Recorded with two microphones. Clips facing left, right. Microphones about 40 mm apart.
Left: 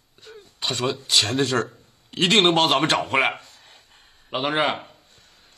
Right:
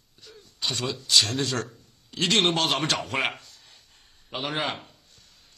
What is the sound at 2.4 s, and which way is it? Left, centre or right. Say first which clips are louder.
A man's voice: left 6 dB; left.